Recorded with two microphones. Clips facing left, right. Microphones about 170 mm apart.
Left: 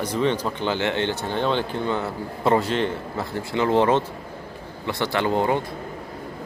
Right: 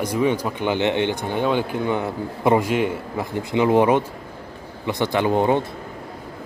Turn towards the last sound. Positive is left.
turn(degrees=-20)  # may be behind; listen again after turning